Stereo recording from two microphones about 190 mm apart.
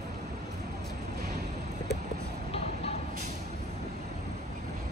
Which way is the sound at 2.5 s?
30° left (ahead or behind).